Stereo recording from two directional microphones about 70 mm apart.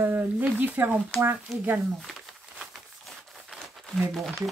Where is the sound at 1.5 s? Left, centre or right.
Centre.